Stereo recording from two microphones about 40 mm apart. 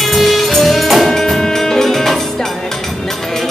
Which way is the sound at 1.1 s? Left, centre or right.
Centre.